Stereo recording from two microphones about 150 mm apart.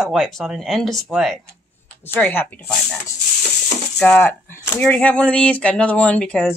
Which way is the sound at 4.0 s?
10° left (ahead or behind).